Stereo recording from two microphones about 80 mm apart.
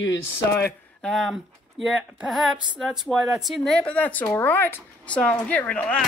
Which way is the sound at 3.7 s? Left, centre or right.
Centre.